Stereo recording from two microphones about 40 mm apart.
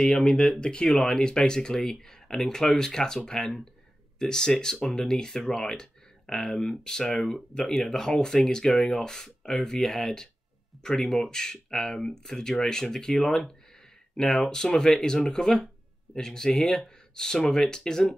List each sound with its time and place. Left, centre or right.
0.0 s speech: left
11.0 s speech: centre
11.2 s speech: centre